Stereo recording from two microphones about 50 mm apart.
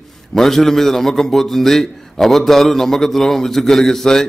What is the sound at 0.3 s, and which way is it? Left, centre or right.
A man's voice, centre.